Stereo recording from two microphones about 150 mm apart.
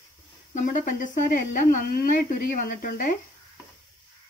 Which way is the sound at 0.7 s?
70° left (ahead or behind).